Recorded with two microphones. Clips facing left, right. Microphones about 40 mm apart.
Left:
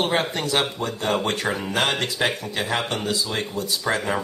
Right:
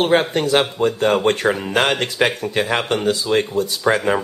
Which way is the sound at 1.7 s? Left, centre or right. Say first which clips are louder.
Right 5 dB; right.